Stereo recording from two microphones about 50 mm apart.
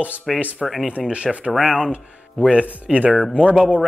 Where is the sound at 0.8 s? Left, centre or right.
Centre.